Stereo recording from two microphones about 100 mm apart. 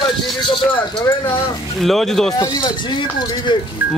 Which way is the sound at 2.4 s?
40° left (ahead or behind).